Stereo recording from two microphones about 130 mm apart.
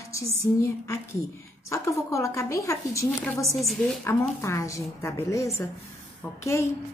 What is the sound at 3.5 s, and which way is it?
Speech, centre (ahead or behind).